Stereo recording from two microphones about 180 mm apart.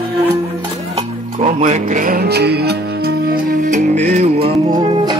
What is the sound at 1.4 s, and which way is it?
Music, 40° right (ahead or behind).